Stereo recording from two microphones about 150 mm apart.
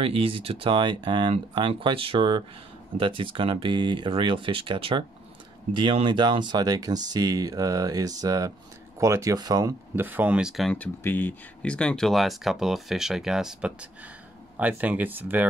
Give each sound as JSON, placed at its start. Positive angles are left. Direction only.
{"t": 0.0, "sound": "speech", "side_deg": -35}
{"t": 9.9, "sound": "speech", "side_deg": -10}